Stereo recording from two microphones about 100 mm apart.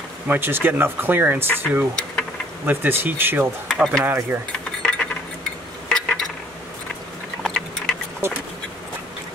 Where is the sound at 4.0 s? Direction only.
20° right (ahead or behind).